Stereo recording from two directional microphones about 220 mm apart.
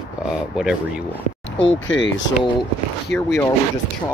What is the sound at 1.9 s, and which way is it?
Speech, 55° left (ahead or behind).